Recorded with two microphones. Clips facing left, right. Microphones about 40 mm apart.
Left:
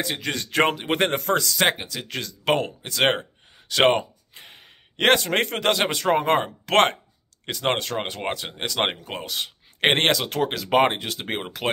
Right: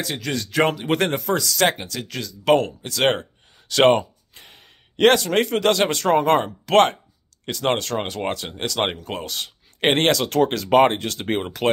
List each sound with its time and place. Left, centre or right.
0.0 s speech: left
0.3 s a man's voice: left
0.7 s speech: left
1.1 s speech: left
1.6 s speech: centre
2.0 s a man's voice: left
2.5 s speech: centre
5.6 s speech: centre
6.6 s a man's voice: left
7.4 s speech: left; by 11.7 s centre